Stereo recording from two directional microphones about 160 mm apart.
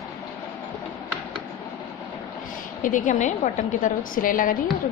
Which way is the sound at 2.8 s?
55° left (ahead or behind).